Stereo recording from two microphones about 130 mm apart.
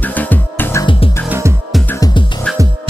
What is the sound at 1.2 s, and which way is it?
Music, 20° right (ahead or behind).